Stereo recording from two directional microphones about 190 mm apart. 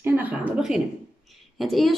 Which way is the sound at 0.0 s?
10° right (ahead or behind).